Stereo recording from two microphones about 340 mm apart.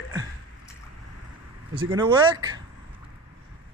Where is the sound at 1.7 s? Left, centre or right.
Centre.